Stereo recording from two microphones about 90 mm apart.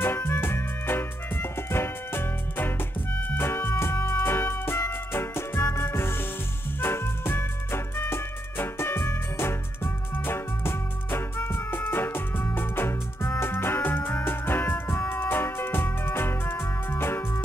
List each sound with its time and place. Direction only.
0.0 s music: 25° left (ahead or behind)